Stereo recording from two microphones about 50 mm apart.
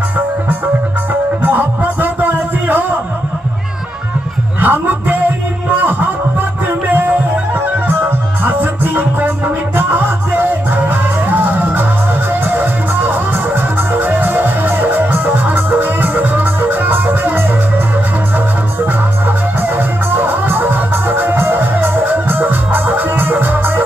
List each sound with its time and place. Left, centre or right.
1.4 s music: right
4.6 s music: right
8.5 s music: right
20.1 s music: right